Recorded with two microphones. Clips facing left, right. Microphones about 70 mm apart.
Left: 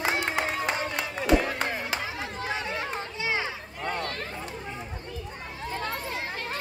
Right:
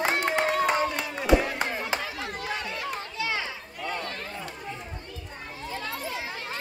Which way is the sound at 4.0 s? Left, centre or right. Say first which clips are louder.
Left 2 dB; left.